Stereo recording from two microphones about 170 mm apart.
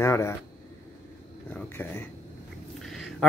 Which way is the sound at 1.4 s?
10° left (ahead or behind).